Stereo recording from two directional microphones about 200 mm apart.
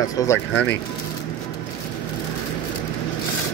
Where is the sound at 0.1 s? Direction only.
15° left (ahead or behind).